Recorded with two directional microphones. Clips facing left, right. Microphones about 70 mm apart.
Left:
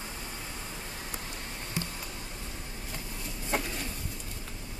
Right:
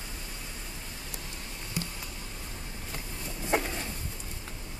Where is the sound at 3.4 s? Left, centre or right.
Right.